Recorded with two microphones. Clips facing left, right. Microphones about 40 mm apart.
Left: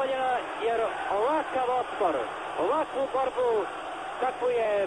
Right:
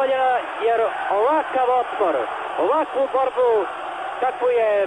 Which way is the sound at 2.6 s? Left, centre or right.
Right.